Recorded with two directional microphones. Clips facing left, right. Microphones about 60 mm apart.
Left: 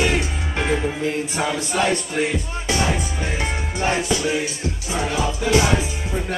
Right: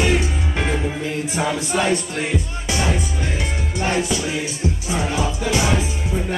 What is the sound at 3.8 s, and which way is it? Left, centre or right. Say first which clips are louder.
Music: right 1 dB; centre.